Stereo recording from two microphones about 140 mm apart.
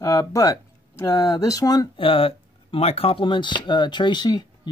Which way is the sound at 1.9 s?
40° left (ahead or behind).